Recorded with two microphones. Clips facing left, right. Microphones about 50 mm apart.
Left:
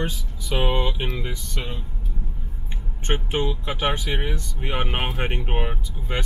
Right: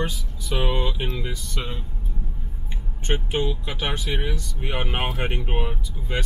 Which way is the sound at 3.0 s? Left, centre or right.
Left.